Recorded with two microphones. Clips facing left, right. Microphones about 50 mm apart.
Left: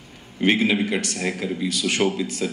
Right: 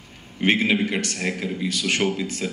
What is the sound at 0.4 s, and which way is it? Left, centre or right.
A man's voice, right.